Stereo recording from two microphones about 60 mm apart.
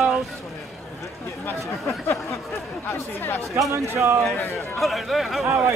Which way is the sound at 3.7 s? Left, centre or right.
Right.